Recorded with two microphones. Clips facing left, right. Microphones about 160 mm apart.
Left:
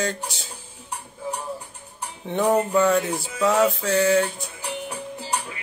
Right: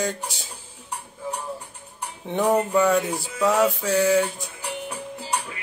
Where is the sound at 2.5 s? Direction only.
5° right (ahead or behind).